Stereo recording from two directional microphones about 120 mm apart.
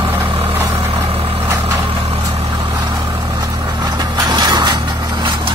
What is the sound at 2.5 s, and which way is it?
Vehicle, 40° right (ahead or behind).